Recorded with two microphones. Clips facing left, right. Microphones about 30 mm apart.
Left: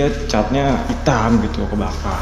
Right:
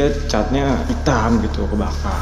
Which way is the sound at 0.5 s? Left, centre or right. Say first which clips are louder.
Left 1 dB; centre.